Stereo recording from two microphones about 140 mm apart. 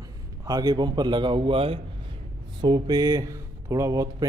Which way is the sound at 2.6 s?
30° right (ahead or behind).